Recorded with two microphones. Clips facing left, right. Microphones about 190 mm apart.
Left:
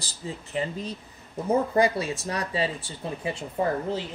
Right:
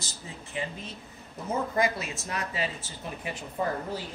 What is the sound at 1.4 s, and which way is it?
Speech, 30° left (ahead or behind).